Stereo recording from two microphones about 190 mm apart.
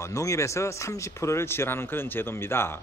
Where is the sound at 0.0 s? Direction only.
15° left (ahead or behind).